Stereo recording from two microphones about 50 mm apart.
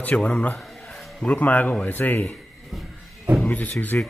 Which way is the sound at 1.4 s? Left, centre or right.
Left.